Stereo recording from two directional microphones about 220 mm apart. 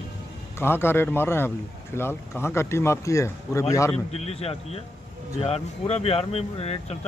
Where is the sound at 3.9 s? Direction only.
30° left (ahead or behind).